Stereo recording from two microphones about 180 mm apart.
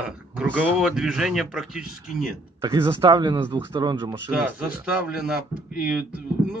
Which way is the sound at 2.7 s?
25° right (ahead or behind).